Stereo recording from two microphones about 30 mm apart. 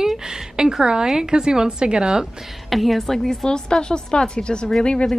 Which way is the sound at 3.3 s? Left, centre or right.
Left.